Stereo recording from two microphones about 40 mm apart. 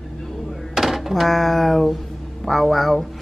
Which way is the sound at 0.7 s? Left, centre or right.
Centre.